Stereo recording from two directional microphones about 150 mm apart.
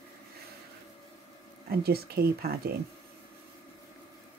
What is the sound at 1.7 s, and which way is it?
Speech, 90° right.